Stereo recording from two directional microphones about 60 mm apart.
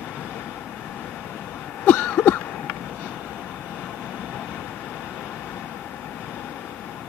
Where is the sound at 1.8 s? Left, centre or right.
Left.